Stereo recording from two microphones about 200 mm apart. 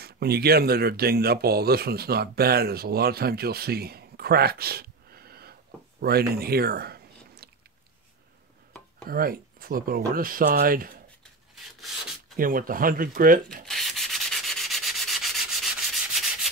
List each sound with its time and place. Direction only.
0.0 s speech: 50° right (ahead or behind)
9.0 s speech: 50° right (ahead or behind)
11.5 s rub: centre (ahead or behind)
12.4 s speech: 45° right (ahead or behind)
13.7 s sanding: centre (ahead or behind)